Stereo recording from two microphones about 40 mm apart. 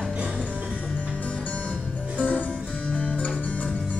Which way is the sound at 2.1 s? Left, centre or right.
Left.